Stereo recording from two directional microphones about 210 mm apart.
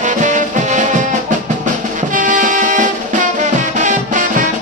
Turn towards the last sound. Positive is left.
turn(degrees=-35)  # may be behind; listen again after turning